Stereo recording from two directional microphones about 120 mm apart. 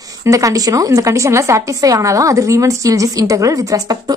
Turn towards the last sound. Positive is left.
turn(degrees=-30)  # may be behind; listen again after turning